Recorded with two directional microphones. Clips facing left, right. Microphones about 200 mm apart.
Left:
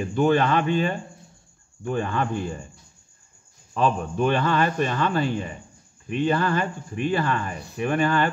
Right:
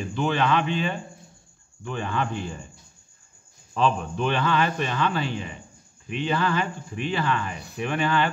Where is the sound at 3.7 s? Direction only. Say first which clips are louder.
Left 1 dB; 45° left (ahead or behind).